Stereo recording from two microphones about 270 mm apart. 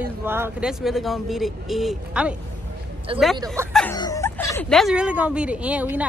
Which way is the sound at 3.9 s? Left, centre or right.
Centre.